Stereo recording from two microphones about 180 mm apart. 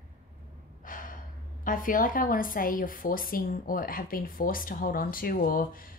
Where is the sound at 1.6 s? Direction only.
50° left (ahead or behind).